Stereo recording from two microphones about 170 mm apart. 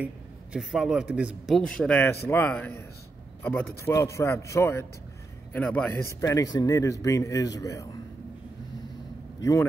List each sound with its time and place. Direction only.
0.0 s a man's voice: 5° right (ahead or behind)
1.5 s a man's voice: 5° left (ahead or behind)
9.4 s a man's voice: 20° left (ahead or behind)